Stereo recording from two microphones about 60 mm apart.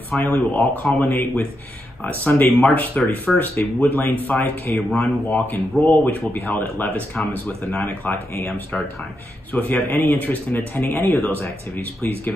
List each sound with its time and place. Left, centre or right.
0.2 s speech: left
2.2 s speech: left